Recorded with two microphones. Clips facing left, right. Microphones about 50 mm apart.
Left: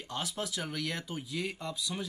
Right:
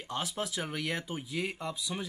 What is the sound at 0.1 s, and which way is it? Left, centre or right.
Speech, centre.